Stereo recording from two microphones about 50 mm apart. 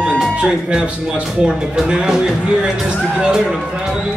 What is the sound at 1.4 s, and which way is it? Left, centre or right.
Speech, centre.